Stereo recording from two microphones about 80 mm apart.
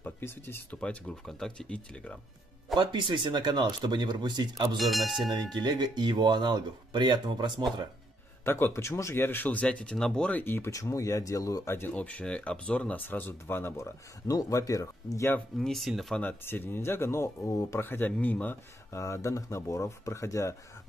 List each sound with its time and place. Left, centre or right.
0.0 s speech: left
0.7 s speech: centre
2.7 s speech: right
4.7 s speech: centre
5.3 s speech: right
8.5 s speech: left; by 10.4 s centre
10.4 s speech: left
10.7 s speech: left
11.9 s speech: centre
13.7 s speech: left
15.5 s speech: centre
16.2 s speech: left
18.9 s speech: left